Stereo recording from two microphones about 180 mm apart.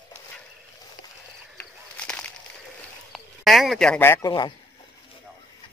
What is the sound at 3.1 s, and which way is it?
Speech, centre (ahead or behind).